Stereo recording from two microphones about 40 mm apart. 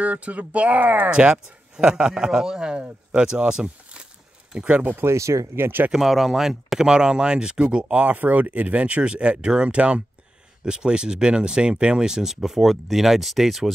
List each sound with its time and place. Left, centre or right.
0.0 s speech: right
1.1 s speech: right
4.6 s speech: right
4.8 s speech: right
5.9 s speech: centre